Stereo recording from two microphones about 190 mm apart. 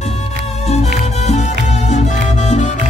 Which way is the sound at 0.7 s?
35° left (ahead or behind).